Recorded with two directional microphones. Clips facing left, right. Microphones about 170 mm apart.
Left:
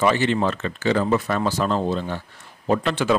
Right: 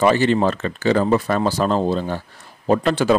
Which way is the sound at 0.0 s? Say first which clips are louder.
Right 4 dB; 40° right (ahead or behind).